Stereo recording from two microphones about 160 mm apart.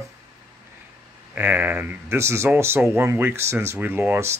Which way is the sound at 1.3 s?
10° right (ahead or behind).